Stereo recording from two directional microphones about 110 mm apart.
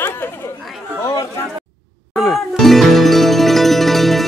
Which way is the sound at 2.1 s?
Centre (ahead or behind).